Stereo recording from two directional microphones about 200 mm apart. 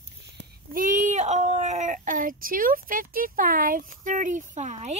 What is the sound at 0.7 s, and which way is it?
A child's voice, 40° right (ahead or behind).